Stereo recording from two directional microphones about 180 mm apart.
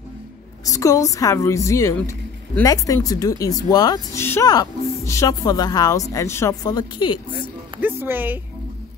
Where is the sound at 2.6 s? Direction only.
20° left (ahead or behind).